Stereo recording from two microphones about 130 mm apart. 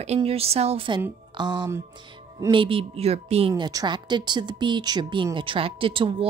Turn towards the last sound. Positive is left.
turn(degrees=-45)  # may be behind; listen again after turning